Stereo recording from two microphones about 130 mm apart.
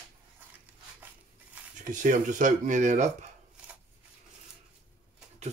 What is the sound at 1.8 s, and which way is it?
Speech, 80° right.